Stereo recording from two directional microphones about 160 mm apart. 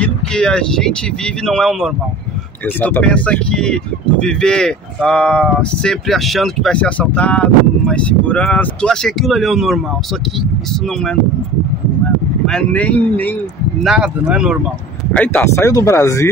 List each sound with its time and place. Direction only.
0.0 s vehicle: 5° left (ahead or behind)
1.4 s speech: 5° left (ahead or behind)
12.4 s speech: 5° left (ahead or behind)
13.8 s speech: 5° right (ahead or behind)
15.1 s speech: 10° left (ahead or behind)